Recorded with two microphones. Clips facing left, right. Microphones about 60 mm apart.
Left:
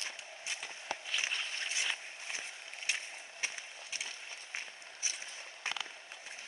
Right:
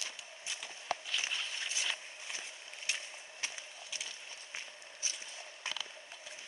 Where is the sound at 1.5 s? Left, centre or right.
Left.